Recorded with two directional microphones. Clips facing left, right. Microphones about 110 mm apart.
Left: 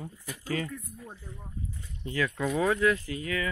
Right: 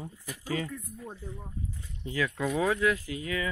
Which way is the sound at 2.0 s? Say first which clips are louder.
Left 1 dB; 5° right (ahead or behind).